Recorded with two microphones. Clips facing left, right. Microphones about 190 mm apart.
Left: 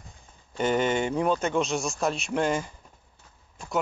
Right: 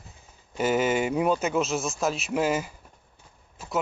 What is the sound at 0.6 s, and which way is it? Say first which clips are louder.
Speech: right 1 dB; 5° right (ahead or behind).